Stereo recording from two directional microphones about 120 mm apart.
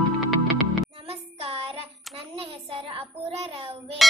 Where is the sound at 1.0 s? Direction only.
55° right (ahead or behind).